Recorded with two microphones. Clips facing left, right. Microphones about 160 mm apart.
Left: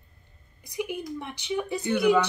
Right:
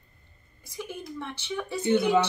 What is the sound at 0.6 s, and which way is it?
Speech, 15° left (ahead or behind).